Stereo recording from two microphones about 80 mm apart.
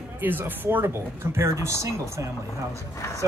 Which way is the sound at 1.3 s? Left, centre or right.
Right.